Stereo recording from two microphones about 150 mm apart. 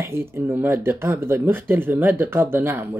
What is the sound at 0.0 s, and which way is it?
Speech, 15° right (ahead or behind).